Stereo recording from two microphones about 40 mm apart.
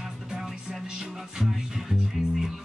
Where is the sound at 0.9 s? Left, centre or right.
Centre.